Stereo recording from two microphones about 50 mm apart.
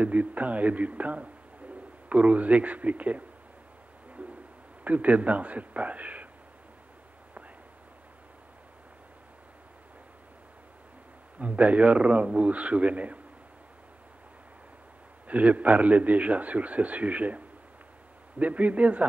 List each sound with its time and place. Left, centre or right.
0.0 s a man's voice: right
4.2 s a sound: right
4.8 s a man's voice: right
11.3 s a man's voice: right
15.2 s a man's voice: right
18.4 s a man's voice: right